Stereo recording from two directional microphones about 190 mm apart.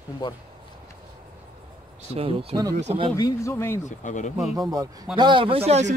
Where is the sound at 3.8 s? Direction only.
40° left (ahead or behind).